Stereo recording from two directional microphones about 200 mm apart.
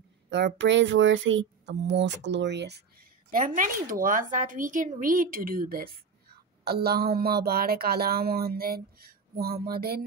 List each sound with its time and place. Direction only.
0.6 s speech: 65° right (ahead or behind)